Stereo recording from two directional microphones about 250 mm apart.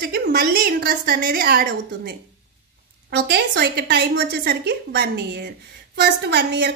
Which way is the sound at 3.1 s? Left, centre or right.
Right.